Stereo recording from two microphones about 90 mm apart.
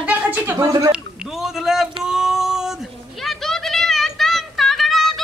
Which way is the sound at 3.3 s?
5° left (ahead or behind).